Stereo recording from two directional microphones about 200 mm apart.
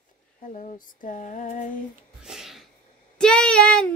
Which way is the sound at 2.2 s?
Centre (ahead or behind).